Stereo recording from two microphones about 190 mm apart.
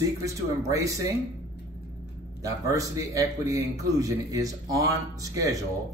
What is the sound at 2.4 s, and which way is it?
A man's voice, 15° right (ahead or behind).